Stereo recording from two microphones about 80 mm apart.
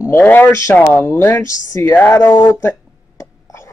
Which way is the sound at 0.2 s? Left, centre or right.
Left.